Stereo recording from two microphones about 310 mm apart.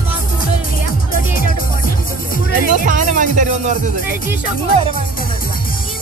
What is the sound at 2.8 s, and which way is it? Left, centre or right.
Music, right.